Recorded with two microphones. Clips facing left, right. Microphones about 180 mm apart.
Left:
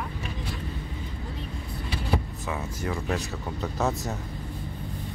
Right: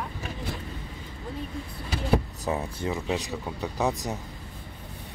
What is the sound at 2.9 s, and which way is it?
Speech, 15° right (ahead or behind).